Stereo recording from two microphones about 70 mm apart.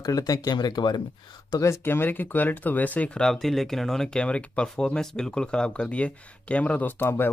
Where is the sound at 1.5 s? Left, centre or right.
Left.